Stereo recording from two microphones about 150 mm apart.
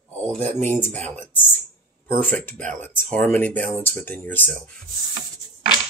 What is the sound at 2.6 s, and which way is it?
Speech, 10° left (ahead or behind).